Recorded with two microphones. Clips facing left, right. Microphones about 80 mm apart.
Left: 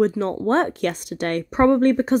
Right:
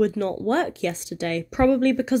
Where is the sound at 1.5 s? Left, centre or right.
Left.